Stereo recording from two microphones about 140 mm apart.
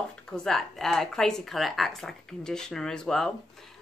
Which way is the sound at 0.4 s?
5° left (ahead or behind).